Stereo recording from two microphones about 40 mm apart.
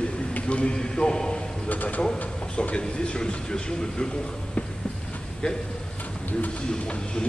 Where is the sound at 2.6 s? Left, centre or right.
Left.